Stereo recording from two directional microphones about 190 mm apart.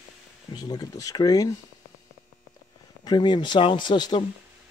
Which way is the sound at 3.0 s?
25° left (ahead or behind).